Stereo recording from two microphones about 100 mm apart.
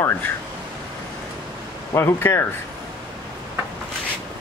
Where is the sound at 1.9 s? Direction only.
25° left (ahead or behind).